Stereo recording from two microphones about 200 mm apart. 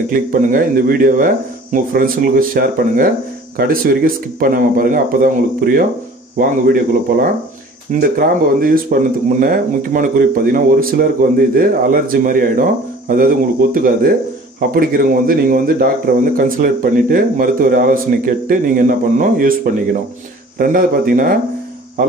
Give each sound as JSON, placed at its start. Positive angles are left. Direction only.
{"t": 0.1, "sound": "speech", "side_deg": -45}